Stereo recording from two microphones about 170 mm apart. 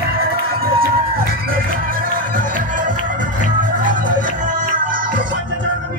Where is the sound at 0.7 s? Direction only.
60° right (ahead or behind).